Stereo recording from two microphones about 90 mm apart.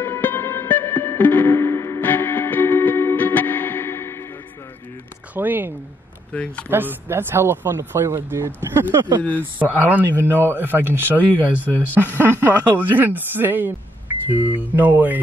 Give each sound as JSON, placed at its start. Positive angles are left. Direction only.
{"t": 0.0, "sound": "music", "side_deg": 25}
{"t": 5.3, "sound": "a sound", "side_deg": -20}
{"t": 6.3, "sound": "speech", "side_deg": 15}
{"t": 6.7, "sound": "speech", "side_deg": -25}
{"t": 11.5, "sound": "speech", "side_deg": 20}
{"t": 11.9, "sound": "speech", "side_deg": -25}